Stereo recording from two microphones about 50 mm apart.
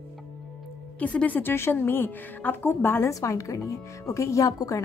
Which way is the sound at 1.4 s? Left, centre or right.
Left.